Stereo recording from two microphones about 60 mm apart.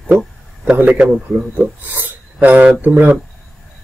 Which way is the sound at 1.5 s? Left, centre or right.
Right.